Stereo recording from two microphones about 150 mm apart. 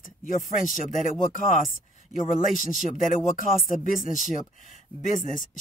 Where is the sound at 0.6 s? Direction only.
60° left (ahead or behind).